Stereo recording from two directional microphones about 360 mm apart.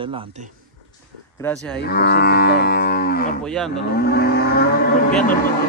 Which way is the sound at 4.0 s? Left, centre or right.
Left.